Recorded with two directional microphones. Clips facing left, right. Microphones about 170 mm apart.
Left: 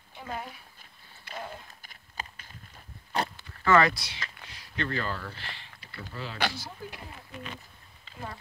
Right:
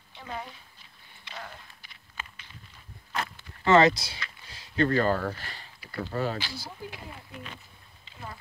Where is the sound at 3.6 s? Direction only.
20° right (ahead or behind).